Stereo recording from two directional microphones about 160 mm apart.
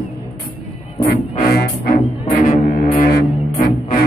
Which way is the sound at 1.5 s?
75° left (ahead or behind).